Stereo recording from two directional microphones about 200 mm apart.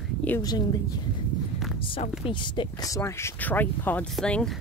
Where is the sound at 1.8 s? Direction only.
25° left (ahead or behind); by 4.6 s 5° left (ahead or behind).